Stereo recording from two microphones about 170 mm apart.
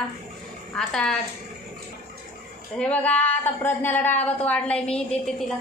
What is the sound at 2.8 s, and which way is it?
A woman's voice, 5° left (ahead or behind).